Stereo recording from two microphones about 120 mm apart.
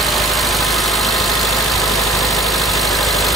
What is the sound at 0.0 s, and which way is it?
Vehicle, centre (ahead or behind).